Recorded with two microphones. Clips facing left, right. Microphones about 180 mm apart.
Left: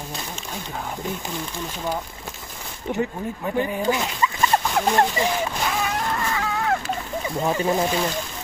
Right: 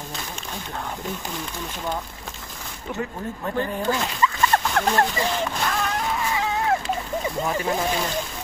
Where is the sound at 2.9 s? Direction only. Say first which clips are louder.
Left 5 dB; 25° left (ahead or behind).